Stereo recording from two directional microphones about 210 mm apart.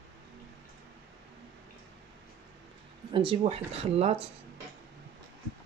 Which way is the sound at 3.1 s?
25° right (ahead or behind).